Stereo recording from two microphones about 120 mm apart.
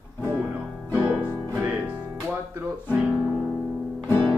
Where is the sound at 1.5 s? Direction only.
15° right (ahead or behind).